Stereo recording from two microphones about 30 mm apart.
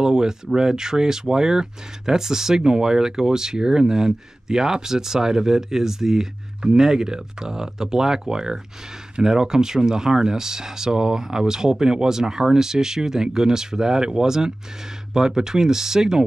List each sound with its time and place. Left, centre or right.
0.0 s speech: right